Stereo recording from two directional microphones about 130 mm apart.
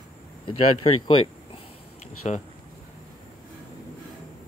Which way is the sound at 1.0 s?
40° left (ahead or behind).